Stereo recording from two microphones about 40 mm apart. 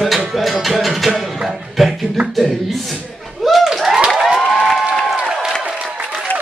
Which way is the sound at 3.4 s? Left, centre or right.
Centre.